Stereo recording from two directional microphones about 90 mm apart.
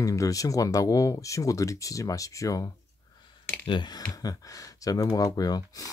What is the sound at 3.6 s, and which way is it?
Speech, 60° left (ahead or behind).